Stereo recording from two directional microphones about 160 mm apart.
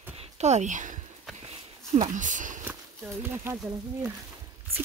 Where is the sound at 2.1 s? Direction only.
55° right (ahead or behind).